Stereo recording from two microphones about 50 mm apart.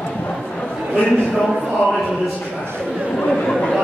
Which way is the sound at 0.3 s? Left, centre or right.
Centre.